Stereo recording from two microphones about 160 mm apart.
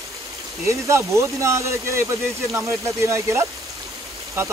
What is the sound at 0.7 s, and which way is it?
Speech, 20° right (ahead or behind).